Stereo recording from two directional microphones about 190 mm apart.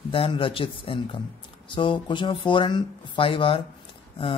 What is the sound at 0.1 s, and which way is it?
Speech, 30° left (ahead or behind).